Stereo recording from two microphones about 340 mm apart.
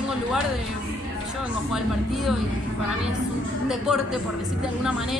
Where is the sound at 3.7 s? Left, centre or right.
Centre.